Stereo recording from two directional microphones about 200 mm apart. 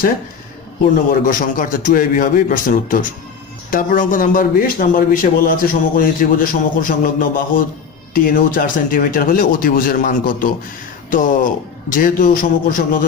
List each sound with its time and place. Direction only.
1.2 s a man's voice: 45° left (ahead or behind)